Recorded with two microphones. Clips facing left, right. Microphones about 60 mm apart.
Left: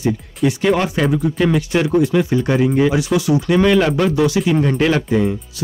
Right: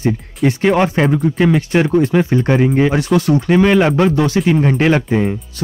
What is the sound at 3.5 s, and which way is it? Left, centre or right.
Speech, right.